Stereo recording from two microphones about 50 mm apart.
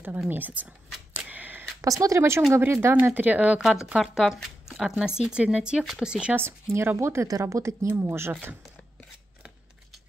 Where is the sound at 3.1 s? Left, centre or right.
Right.